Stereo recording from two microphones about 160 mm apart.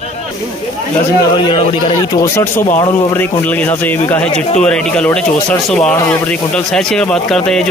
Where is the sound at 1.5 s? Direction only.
30° left (ahead or behind).